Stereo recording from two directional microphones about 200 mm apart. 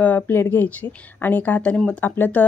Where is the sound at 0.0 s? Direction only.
10° left (ahead or behind).